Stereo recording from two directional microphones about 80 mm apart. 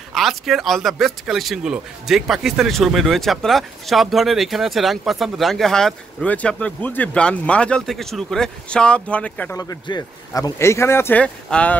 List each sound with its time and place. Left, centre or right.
0.1 s speech: centre
6.2 s speech: centre
7.8 s speech: centre
9.9 s speech: left
10.6 s speech: left
11.1 s speech: centre